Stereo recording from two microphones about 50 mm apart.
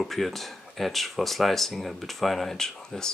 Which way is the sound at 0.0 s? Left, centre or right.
Centre.